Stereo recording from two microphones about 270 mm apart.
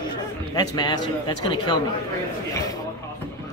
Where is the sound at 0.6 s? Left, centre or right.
Centre.